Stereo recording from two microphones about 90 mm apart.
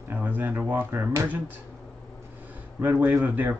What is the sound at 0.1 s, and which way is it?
Speech, 20° right (ahead or behind).